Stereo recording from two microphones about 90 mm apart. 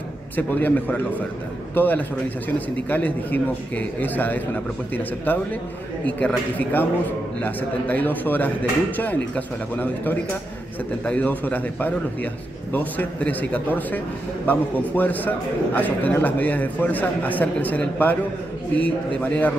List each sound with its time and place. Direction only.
0.4 s a man's voice: 20° left (ahead or behind)